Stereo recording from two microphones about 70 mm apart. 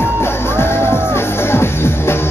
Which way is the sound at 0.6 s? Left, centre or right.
Left.